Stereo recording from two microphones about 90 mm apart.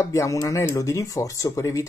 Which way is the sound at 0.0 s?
35° left (ahead or behind).